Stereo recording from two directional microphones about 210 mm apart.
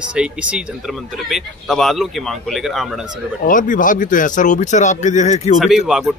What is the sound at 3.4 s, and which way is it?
Speech, 40° left (ahead or behind).